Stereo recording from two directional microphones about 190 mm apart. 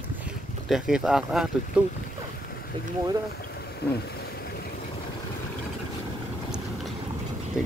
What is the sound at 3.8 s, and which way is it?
Boat, 55° left (ahead or behind).